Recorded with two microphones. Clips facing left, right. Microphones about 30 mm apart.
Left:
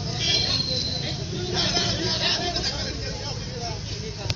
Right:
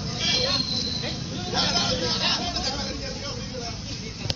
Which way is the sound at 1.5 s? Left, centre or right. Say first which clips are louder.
Right 1 dB; centre.